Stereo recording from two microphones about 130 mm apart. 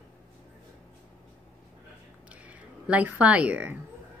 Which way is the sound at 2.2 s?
10° right (ahead or behind).